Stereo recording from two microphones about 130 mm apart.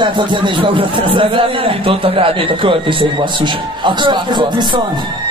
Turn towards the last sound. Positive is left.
turn(degrees=-40)  # may be behind; listen again after turning